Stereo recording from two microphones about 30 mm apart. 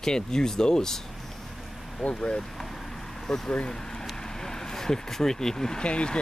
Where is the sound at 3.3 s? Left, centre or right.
Centre.